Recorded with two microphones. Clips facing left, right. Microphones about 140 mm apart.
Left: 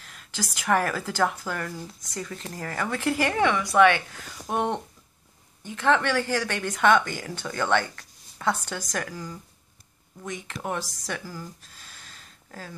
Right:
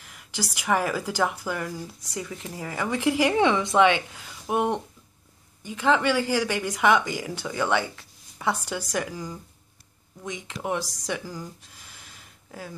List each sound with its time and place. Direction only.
0.0 s speech: 15° right (ahead or behind)